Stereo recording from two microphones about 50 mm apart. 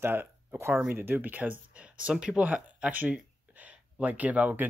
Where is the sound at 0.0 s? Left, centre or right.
Right.